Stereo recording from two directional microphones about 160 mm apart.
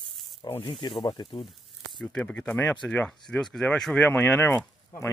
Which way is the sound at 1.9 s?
5° left (ahead or behind).